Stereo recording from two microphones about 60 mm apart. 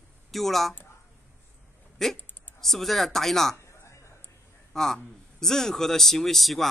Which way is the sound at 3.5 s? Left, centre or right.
Left.